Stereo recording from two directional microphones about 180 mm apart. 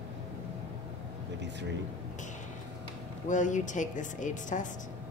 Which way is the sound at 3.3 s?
45° left (ahead or behind).